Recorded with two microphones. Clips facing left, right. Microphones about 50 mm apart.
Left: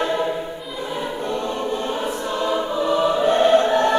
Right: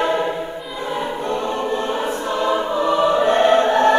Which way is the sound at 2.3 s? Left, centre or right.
Centre.